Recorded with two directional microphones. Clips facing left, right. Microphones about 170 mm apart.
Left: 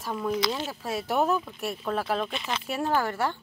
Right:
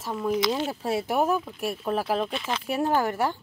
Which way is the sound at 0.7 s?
25° right (ahead or behind).